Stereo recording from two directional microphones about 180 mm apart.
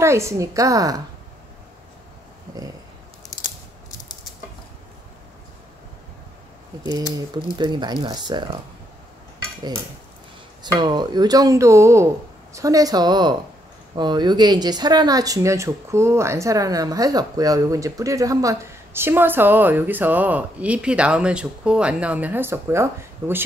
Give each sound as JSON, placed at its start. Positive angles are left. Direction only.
{"t": 0.0, "sound": "speech", "side_deg": -15}
{"t": 6.8, "sound": "speech", "side_deg": -25}
{"t": 10.6, "sound": "speech", "side_deg": -25}